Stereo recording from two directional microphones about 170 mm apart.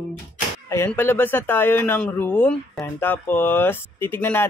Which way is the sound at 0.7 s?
15° left (ahead or behind).